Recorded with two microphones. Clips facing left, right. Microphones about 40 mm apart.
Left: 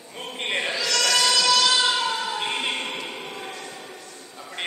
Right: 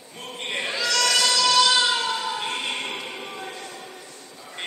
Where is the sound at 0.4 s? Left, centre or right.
Left.